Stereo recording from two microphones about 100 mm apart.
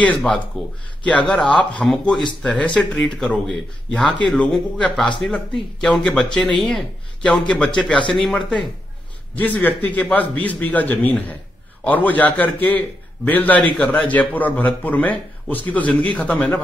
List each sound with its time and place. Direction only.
0.5 s a man's voice: 5° left (ahead or behind)
9.3 s a man's voice: 15° left (ahead or behind)